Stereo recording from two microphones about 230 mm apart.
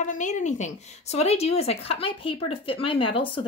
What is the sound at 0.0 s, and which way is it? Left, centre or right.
Speech, left.